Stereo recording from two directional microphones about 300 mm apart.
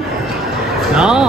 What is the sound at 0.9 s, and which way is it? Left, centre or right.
Speech, centre.